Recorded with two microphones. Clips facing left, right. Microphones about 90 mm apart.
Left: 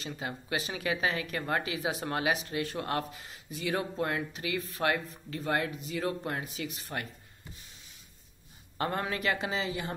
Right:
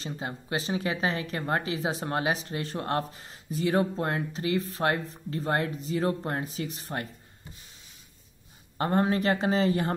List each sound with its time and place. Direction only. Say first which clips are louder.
0.0 s speech: right 2 dB; 30° right (ahead or behind)
8.7 s speech: right 7 dB; 30° right (ahead or behind); by 9.9 s 45° right (ahead or behind)